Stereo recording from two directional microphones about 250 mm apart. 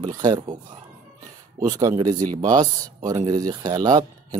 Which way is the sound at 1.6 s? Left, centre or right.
Centre.